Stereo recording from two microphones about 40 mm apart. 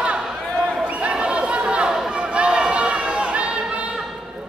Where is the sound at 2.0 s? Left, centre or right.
Right.